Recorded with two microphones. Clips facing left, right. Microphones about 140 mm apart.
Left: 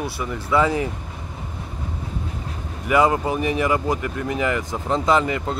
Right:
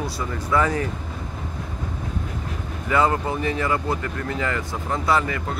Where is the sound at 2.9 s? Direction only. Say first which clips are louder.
Left 3 dB; 15° left (ahead or behind).